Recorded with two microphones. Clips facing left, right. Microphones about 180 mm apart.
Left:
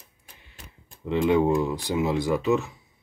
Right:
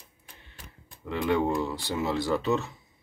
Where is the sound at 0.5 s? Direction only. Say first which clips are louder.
Left 3 dB; 20° left (ahead or behind).